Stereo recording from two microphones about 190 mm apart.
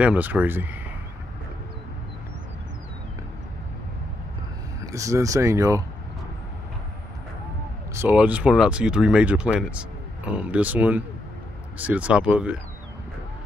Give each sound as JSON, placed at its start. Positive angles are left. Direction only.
{"t": 0.0, "sound": "speech", "side_deg": -10}
{"t": 4.8, "sound": "speech", "side_deg": -15}
{"t": 7.9, "sound": "speech", "side_deg": -10}